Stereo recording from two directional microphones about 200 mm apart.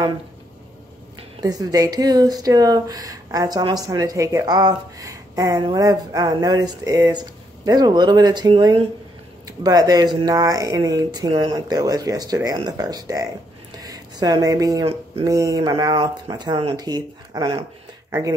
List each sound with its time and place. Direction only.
1.4 s speech: 20° right (ahead or behind)
13.7 s a sound: 20° right (ahead or behind)
15.2 s speech: 15° right (ahead or behind)